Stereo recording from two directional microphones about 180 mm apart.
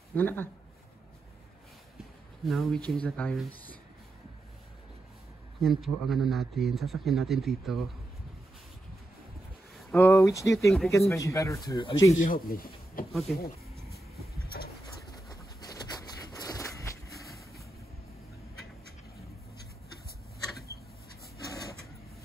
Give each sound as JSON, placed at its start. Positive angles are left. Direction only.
{"t": 0.1, "sound": "speech", "side_deg": 10}
{"t": 2.4, "sound": "speech", "side_deg": 0}
{"t": 5.6, "sound": "speech", "side_deg": 0}
{"t": 9.8, "sound": "speech", "side_deg": 5}
{"t": 12.1, "sound": "speech", "side_deg": 45}
{"t": 15.0, "sound": "a sound", "side_deg": 20}
{"t": 21.5, "sound": "a sound", "side_deg": 20}